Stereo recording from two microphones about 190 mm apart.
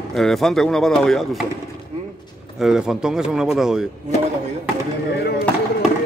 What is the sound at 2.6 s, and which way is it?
Speech, centre (ahead or behind).